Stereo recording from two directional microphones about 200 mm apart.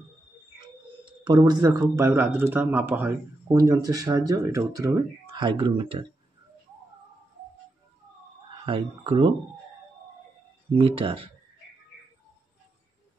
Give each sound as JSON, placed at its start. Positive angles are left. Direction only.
{"t": 1.2, "sound": "speech", "side_deg": -20}
{"t": 8.6, "sound": "speech", "side_deg": -25}
{"t": 10.7, "sound": "speech", "side_deg": -25}